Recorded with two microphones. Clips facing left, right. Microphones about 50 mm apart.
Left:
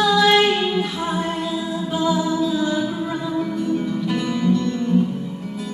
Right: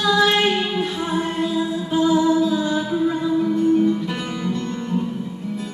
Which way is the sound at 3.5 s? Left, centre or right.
Right.